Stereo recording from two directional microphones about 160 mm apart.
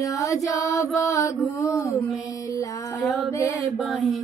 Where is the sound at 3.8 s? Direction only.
Centre (ahead or behind).